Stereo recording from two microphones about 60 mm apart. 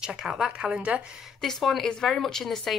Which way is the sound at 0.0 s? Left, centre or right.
Centre.